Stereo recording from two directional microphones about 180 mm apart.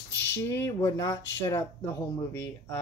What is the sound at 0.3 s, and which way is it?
Speech, 15° left (ahead or behind).